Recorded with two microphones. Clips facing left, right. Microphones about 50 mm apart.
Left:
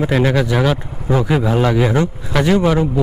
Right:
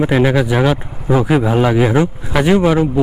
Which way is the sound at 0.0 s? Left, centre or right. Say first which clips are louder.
Right 2 dB; centre.